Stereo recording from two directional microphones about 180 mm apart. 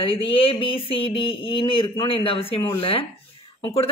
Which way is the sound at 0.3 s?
30° left (ahead or behind).